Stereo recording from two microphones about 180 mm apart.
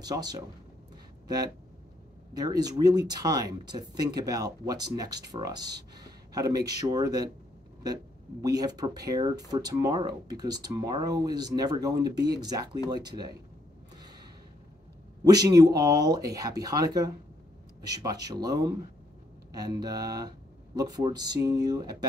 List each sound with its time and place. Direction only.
0.0 s speech: 20° right (ahead or behind)
2.3 s speech: 20° right (ahead or behind)
15.2 s speech: 20° right (ahead or behind)